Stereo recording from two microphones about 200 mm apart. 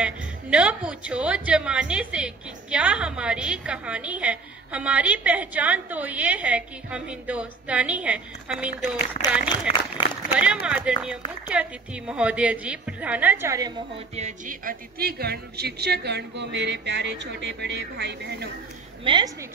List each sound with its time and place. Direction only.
0.0 s a woman's voice: 5° right (ahead or behind)
10.3 s a woman's voice: 5° right (ahead or behind)
14.1 s a woman's voice: 35° right (ahead or behind); by 18.5 s 55° right (ahead or behind)
19.0 s a woman's voice: 25° right (ahead or behind)